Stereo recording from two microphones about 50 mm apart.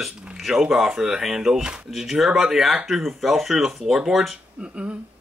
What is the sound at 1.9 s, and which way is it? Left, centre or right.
Speech, centre.